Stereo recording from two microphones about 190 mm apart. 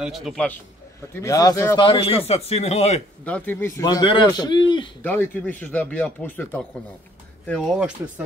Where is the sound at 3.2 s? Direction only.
10° left (ahead or behind).